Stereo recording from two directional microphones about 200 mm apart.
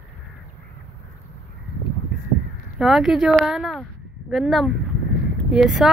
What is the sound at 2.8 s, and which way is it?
Speech, centre (ahead or behind).